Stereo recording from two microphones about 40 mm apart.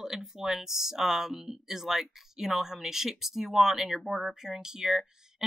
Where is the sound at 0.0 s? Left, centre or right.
Centre.